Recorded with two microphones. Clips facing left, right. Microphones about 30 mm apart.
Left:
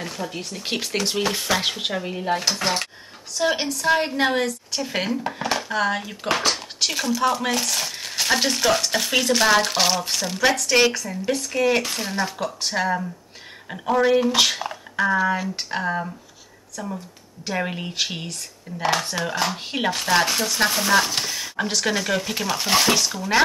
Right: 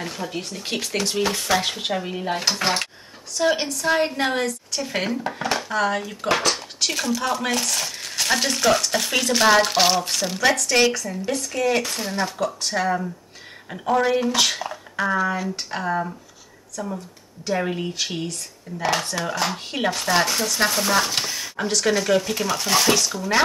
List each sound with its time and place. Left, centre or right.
0.0 s speech: centre
0.7 s speech: centre
3.3 s speech: centre